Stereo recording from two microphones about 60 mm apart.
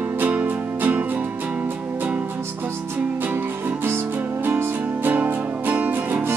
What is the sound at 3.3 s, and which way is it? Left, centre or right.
Music, right.